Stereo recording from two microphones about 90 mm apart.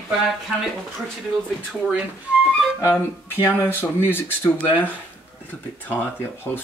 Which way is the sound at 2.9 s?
20° left (ahead or behind).